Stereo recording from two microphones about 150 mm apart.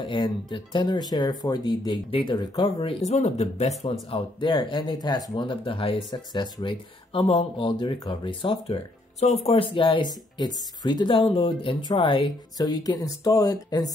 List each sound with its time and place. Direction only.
0.0 s speech: 30° left (ahead or behind); by 3.9 s 45° left (ahead or behind)
4.1 s speech: 30° left (ahead or behind)